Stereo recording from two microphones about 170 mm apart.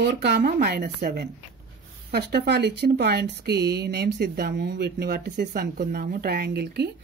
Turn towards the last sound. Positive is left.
turn(degrees=-75)  # may be behind; listen again after turning